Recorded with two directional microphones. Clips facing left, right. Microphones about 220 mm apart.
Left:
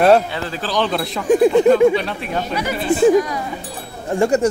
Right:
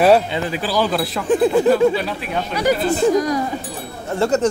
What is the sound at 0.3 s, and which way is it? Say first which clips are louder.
Speech: right 2 dB; 15° right (ahead or behind).